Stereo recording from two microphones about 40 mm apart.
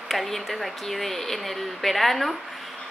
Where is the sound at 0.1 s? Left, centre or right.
Centre.